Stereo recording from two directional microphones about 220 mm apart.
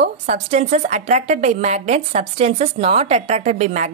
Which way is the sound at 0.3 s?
30° right (ahead or behind).